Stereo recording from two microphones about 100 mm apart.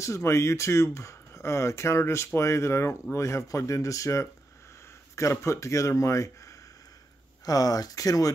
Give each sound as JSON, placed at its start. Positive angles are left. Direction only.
{"t": 0.0, "sound": "a man's voice", "side_deg": 30}